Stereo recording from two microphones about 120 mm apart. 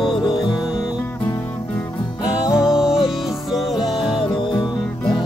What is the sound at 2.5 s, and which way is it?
Music, 5° right (ahead or behind).